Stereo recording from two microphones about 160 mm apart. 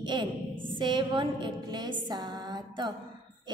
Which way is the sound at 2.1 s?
25° right (ahead or behind).